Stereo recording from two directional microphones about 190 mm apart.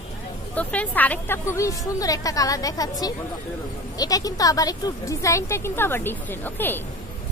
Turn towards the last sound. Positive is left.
turn(degrees=10)  # may be behind; listen again after turning